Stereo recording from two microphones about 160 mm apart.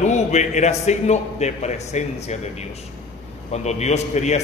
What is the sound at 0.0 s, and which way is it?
A man's voice, 45° left (ahead or behind).